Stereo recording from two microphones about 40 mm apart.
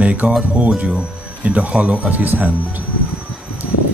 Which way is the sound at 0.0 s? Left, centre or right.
Right.